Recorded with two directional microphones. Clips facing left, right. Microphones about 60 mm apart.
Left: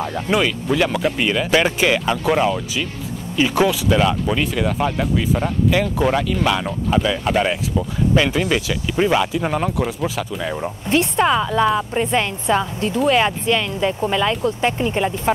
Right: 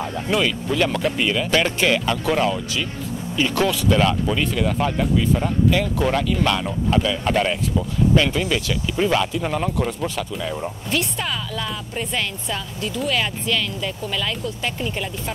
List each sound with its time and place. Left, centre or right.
0.3 s speech: centre
10.5 s speech: left